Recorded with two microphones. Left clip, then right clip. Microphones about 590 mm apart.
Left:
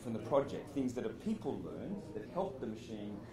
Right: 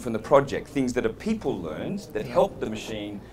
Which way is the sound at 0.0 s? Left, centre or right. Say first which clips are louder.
Right 14 dB; right.